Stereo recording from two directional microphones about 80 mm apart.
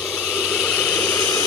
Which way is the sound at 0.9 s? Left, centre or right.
Centre.